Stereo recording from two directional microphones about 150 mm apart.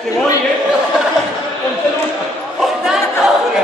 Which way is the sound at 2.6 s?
5° right (ahead or behind).